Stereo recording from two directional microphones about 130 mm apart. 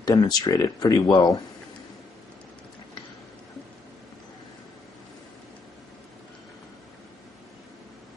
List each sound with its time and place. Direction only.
0.0 s speech: 30° left (ahead or behind)